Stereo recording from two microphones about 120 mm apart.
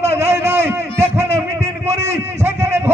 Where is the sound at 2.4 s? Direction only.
20° right (ahead or behind).